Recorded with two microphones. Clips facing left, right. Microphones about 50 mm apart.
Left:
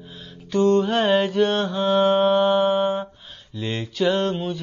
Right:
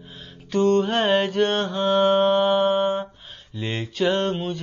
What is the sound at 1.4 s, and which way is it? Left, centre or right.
Mantra, right.